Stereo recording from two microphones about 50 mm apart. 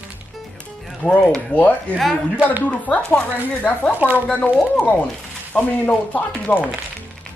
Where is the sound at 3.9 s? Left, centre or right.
Right.